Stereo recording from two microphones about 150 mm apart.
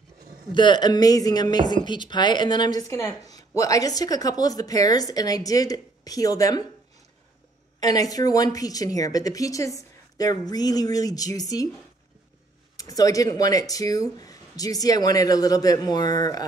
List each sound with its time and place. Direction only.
0.5 s a woman's voice: 30° left (ahead or behind)
7.8 s a woman's voice: 25° left (ahead or behind)
12.7 s a woman's voice: 25° left (ahead or behind)